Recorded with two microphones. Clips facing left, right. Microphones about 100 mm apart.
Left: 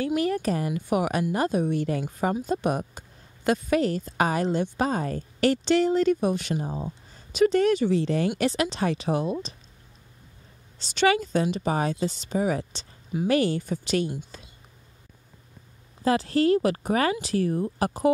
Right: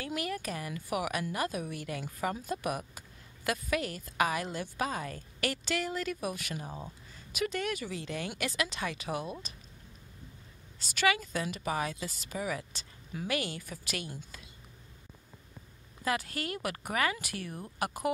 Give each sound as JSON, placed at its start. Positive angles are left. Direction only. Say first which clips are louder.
{"t": 0.0, "sound": "a woman's voice", "louder": "left 11 dB", "side_deg": 30}
{"t": 10.8, "sound": "speech", "louder": "left 7 dB", "side_deg": 25}
{"t": 14.3, "sound": "a sound", "louder": "left 6 dB", "side_deg": 30}
{"t": 16.0, "sound": "a woman's voice", "louder": "left 11 dB", "side_deg": 30}